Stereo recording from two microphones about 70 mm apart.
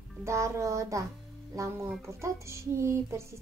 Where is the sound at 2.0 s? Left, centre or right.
Right.